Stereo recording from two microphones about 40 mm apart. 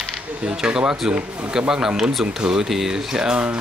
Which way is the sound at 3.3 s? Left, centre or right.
Right.